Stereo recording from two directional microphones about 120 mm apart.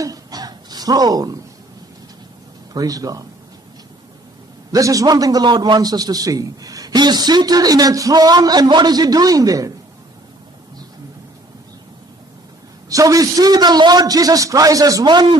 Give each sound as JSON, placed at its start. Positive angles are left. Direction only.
{"t": 0.0, "sound": "a sound", "side_deg": -30}
{"t": 2.7, "sound": "a man's voice", "side_deg": -30}
{"t": 4.7, "sound": "a man's voice", "side_deg": -30}
{"t": 12.9, "sound": "a man's voice", "side_deg": -30}